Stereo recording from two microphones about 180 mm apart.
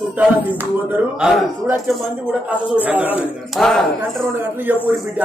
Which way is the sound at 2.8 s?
10° right (ahead or behind).